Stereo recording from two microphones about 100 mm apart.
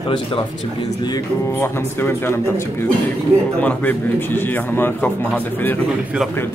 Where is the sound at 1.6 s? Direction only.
25° left (ahead or behind).